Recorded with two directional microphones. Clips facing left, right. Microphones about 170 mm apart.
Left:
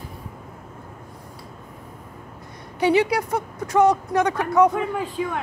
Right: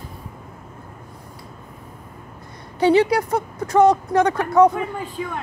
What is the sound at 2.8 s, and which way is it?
A woman's voice, 30° right (ahead or behind).